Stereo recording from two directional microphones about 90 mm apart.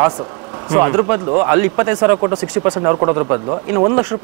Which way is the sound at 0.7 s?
20° right (ahead or behind).